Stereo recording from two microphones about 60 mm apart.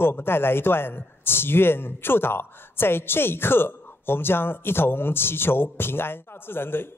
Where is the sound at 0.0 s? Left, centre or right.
Left.